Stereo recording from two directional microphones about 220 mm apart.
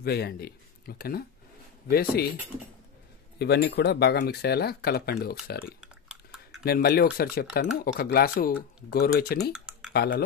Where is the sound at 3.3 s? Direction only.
50° left (ahead or behind).